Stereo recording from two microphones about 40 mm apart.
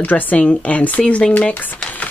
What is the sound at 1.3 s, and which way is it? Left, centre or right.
Speech, left.